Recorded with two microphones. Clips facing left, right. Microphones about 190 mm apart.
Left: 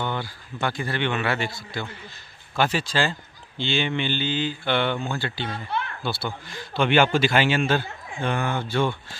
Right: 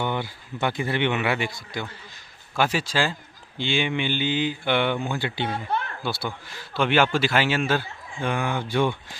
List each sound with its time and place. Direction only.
0.0 s a man's voice: 15° right (ahead or behind)
5.5 s speech: 40° right (ahead or behind)
6.0 s a man's voice: 10° right (ahead or behind)